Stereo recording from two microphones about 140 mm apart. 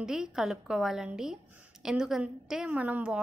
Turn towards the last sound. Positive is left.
turn(degrees=-10)  # may be behind; listen again after turning